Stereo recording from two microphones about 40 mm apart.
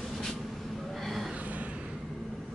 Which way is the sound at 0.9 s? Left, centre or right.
Centre.